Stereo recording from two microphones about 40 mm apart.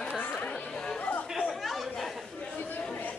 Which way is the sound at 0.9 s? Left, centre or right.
Left.